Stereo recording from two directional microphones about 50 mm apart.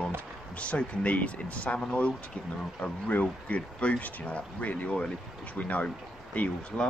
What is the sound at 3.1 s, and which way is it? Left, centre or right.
Speech, left.